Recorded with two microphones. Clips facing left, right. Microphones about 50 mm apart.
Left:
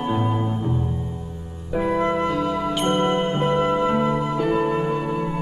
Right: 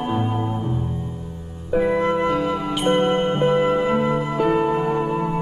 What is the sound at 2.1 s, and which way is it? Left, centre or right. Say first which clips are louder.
Music: right 2 dB; right.